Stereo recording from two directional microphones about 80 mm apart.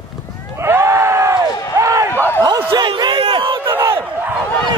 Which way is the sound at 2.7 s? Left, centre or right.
Right.